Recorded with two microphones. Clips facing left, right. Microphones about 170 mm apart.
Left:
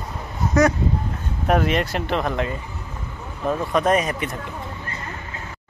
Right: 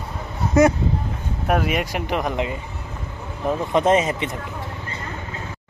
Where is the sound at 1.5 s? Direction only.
10° right (ahead or behind).